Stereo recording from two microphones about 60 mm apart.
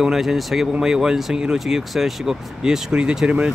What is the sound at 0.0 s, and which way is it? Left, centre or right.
Speech, centre.